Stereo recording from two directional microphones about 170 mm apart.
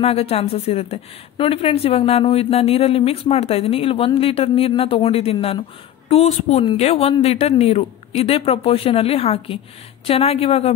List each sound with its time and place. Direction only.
0.0 s speech: 35° left (ahead or behind)